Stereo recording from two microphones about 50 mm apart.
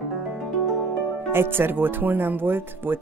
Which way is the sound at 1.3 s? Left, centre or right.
Right.